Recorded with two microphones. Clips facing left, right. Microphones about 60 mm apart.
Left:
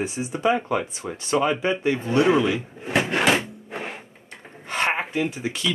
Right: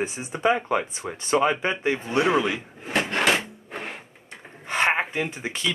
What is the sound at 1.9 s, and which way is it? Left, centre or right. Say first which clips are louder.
Drawer open or close: left 3 dB; centre.